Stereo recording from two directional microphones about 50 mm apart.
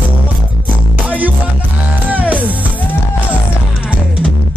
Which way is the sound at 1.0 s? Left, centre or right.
Right.